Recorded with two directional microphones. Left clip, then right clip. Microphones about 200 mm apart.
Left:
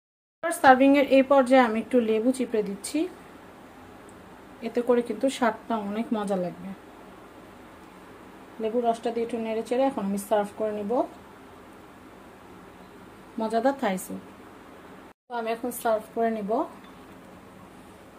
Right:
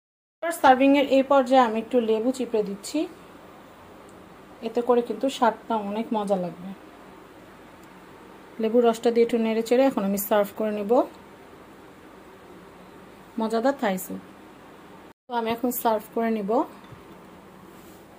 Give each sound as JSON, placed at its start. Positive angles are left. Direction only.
{"t": 0.4, "sound": "speech", "side_deg": 0}
{"t": 4.6, "sound": "speech", "side_deg": 0}
{"t": 8.5, "sound": "speech", "side_deg": -40}
{"t": 13.4, "sound": "a woman's voice", "side_deg": -20}
{"t": 15.3, "sound": "a woman's voice", "side_deg": -45}
{"t": 16.3, "sound": "speech", "side_deg": -35}